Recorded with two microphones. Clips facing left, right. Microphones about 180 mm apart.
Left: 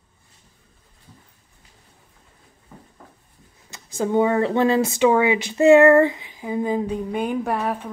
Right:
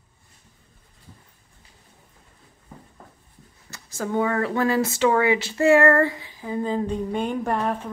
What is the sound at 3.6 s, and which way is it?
Speech, 15° left (ahead or behind).